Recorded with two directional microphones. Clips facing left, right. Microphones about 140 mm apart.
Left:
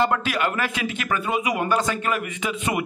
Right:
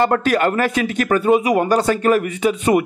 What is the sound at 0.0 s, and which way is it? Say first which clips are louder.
A man's voice: right 6 dB; 45° right (ahead or behind).